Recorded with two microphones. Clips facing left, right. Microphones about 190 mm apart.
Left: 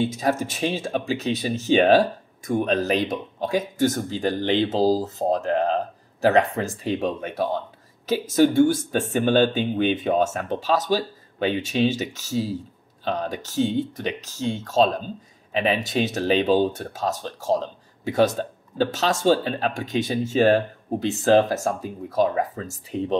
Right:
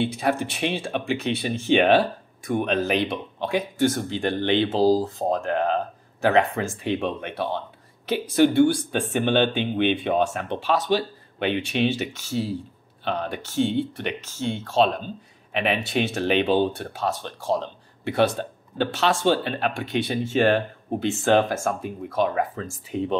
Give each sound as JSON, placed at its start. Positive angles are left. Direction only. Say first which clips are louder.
{"t": 0.0, "sound": "speech", "louder": "left 1 dB", "side_deg": 40}